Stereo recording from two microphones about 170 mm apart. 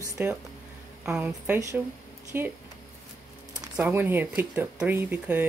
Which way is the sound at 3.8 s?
10° right (ahead or behind).